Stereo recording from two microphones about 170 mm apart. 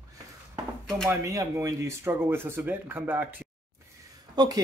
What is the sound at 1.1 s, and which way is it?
A man's voice, 15° right (ahead or behind).